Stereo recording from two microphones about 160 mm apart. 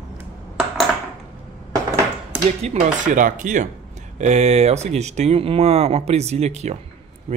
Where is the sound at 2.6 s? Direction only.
50° right (ahead or behind).